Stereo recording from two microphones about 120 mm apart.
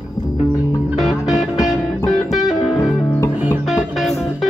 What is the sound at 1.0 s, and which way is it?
Music, 5° right (ahead or behind).